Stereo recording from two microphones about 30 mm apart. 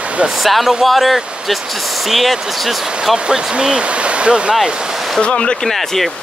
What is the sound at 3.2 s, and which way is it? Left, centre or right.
Speech, right.